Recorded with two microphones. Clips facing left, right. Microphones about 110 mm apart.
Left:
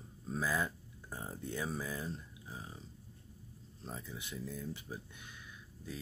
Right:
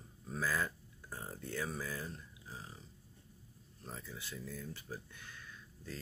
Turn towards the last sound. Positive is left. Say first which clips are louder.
# left 2 dB
turn(degrees=15)  # may be behind; listen again after turning